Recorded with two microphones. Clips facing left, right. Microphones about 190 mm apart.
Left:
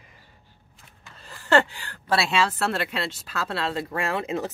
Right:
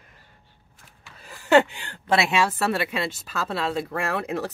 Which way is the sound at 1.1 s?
10° right (ahead or behind).